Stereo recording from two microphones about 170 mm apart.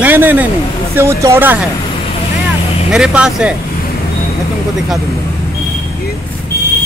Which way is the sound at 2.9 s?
5° right (ahead or behind).